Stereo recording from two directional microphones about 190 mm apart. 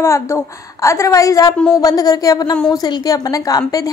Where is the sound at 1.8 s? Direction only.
20° left (ahead or behind).